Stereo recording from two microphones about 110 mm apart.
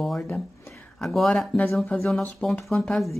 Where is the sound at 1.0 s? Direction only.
Centre (ahead or behind).